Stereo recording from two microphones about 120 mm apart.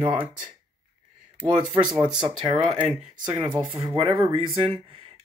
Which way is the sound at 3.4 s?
45° right (ahead or behind).